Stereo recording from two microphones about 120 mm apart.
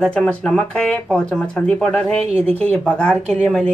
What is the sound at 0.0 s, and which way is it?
Speech, 5° left (ahead or behind).